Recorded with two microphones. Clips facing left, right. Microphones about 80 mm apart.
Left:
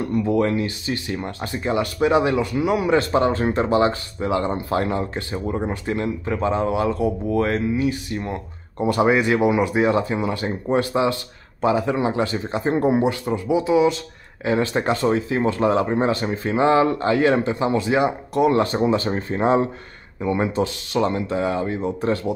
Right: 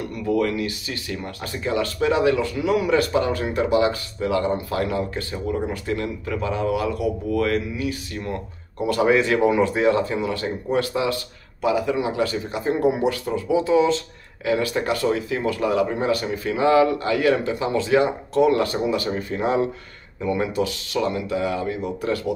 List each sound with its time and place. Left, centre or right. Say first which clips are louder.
0.0 s speech: left 2 dB; left
14.4 s speech: left 2 dB; left